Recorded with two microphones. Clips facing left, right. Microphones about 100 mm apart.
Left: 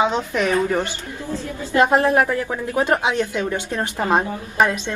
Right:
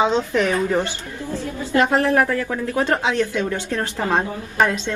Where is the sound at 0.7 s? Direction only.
15° right (ahead or behind).